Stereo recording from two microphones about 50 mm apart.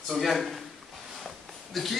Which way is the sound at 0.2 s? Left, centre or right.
Centre.